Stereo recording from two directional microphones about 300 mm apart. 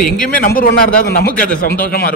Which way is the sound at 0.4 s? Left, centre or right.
Left.